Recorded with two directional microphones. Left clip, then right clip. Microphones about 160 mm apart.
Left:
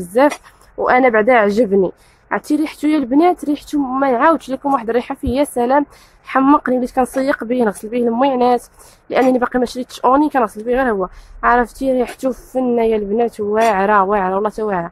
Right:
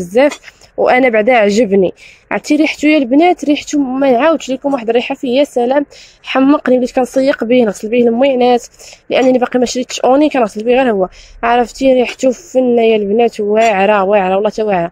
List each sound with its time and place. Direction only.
0.8 s speech: 15° right (ahead or behind)